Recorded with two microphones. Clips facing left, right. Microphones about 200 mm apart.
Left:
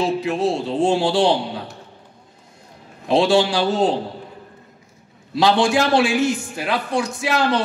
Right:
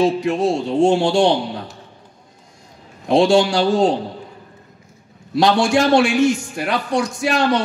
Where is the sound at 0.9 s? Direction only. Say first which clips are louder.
Right 2 dB; 20° right (ahead or behind).